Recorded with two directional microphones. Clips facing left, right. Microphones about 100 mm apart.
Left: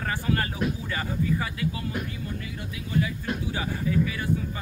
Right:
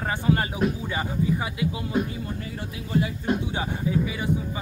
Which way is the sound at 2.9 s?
25° right (ahead or behind).